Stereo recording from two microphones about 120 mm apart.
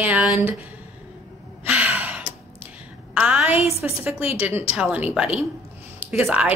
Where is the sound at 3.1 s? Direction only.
10° right (ahead or behind).